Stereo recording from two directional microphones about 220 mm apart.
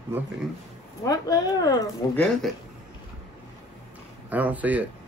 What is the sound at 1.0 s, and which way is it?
Speech, 15° left (ahead or behind).